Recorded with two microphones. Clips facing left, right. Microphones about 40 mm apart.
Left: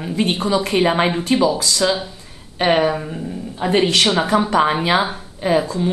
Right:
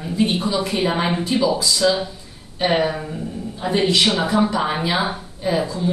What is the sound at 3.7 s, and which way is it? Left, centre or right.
Speech, left.